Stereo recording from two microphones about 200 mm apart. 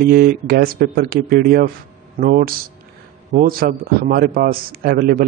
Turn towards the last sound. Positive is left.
turn(degrees=-50)  # may be behind; listen again after turning